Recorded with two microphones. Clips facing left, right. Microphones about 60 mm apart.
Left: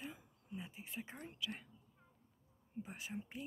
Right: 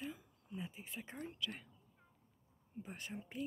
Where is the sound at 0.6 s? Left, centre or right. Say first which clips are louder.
Right 1 dB; centre.